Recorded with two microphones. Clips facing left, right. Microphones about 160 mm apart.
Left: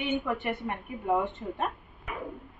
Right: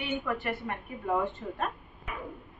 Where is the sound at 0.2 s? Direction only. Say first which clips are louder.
Left 1 dB; 20° left (ahead or behind).